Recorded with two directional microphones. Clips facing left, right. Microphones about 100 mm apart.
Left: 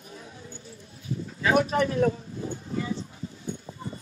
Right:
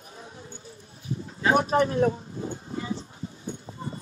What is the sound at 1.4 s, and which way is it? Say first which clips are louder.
Speech: right 1 dB; 30° right (ahead or behind).